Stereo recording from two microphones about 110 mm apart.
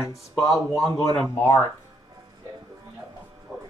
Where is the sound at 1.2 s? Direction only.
25° left (ahead or behind).